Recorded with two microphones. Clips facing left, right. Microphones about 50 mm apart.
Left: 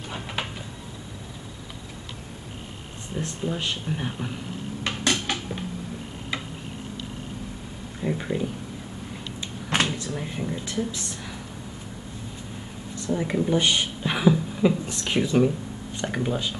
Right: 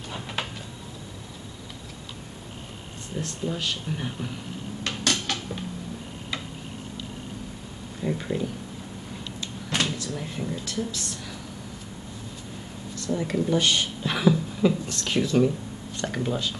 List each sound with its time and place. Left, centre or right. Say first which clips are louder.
0.1 s a sound: left 1 dB; centre
3.4 s speech: left 1 dB; centre
4.8 s dishes: left 2 dB; centre
8.0 s speech: left 1 dB; centre
9.9 s speech: left 1 dB; centre
12.9 s speech: left 1 dB; centre